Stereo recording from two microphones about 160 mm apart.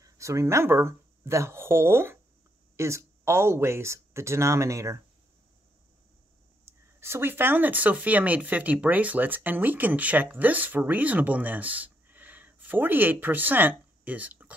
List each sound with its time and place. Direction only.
0.0 s speech: 20° right (ahead or behind)
6.6 s speech: 15° right (ahead or behind)